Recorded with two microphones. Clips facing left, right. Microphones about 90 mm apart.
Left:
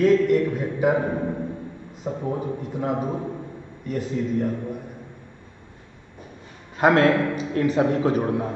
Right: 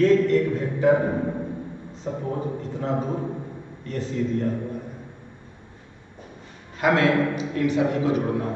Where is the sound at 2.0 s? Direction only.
10° left (ahead or behind).